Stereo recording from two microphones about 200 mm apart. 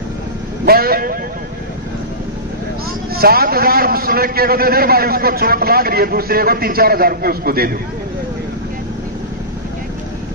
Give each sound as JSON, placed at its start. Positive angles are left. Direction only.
{"t": 0.7, "sound": "a man's voice", "side_deg": -50}
{"t": 3.2, "sound": "a man's voice", "side_deg": -50}